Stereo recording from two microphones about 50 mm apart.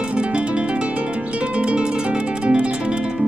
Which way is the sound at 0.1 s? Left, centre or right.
Right.